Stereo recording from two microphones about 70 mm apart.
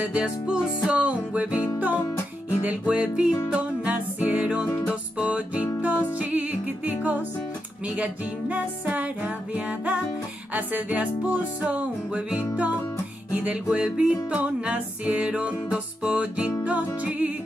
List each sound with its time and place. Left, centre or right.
0.0 s music: centre
2.9 s music: centre